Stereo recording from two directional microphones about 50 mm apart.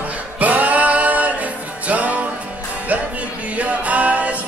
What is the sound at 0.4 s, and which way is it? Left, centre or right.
Music, right.